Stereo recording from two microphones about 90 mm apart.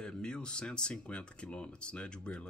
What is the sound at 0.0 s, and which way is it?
A man's voice, 10° left (ahead or behind).